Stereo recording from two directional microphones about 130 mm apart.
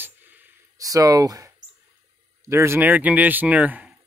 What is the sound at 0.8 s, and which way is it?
Speech, 25° right (ahead or behind).